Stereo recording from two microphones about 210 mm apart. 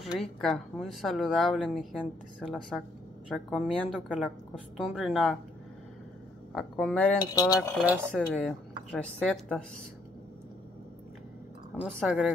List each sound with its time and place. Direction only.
0.0 s speech: centre (ahead or behind)
6.5 s speech: 5° left (ahead or behind)
7.3 s speech: 15° left (ahead or behind)
7.7 s speech: 5° right (ahead or behind)
8.1 s speech: 5° left (ahead or behind)
11.8 s speech: 5° right (ahead or behind)